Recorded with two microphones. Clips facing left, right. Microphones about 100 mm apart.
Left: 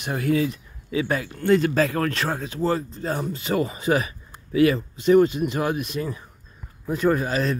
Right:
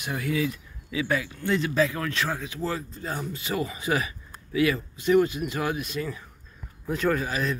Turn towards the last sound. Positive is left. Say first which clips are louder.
# left 4 dB
turn(degrees=30)  # may be behind; listen again after turning